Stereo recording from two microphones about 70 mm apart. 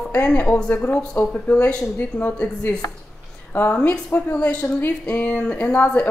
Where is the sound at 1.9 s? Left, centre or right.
Left.